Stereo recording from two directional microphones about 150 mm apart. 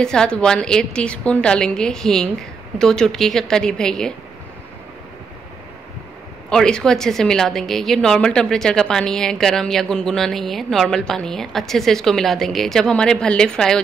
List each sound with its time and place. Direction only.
0.0 s a woman's voice: 5° left (ahead or behind)
6.5 s a woman's voice: 5° left (ahead or behind)